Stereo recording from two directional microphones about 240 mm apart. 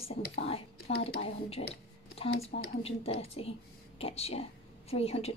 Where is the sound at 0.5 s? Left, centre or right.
Left.